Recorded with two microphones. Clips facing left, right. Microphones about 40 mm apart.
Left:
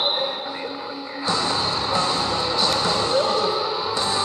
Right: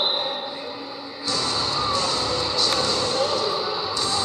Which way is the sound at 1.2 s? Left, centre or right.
Left.